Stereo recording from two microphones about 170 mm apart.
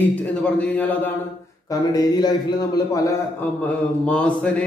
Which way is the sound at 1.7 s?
25° left (ahead or behind).